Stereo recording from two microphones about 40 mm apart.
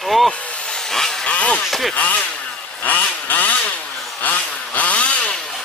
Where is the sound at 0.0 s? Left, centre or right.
Centre.